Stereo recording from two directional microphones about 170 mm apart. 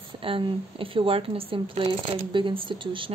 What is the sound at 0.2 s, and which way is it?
Speech, 30° right (ahead or behind).